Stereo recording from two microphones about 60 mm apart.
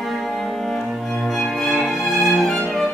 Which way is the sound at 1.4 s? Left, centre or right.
Centre.